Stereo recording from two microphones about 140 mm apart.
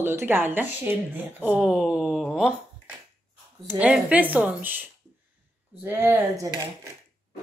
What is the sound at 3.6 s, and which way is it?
Speech, 10° right (ahead or behind).